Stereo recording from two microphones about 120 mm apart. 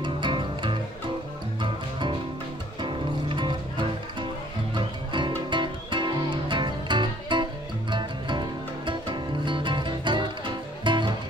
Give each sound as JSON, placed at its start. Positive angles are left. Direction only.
{"t": 0.0, "sound": "music", "side_deg": -40}